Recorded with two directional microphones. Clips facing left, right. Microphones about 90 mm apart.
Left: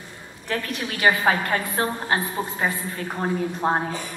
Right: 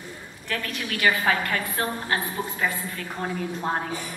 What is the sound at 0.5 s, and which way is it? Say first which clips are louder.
A woman's voice: left 3 dB; 30° left (ahead or behind).